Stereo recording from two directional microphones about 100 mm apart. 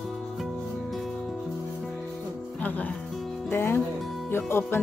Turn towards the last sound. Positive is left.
turn(degrees=25)  # may be behind; listen again after turning